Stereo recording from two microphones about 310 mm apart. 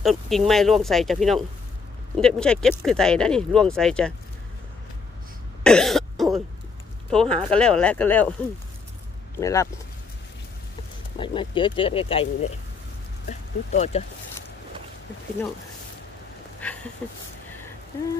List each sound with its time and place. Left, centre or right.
0.0 s speech: centre
5.6 s cough: centre
7.1 s speech: centre
9.4 s speech: centre
11.1 s speech: centre